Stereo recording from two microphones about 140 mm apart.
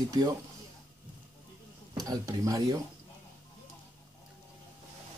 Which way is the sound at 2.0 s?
25° right (ahead or behind).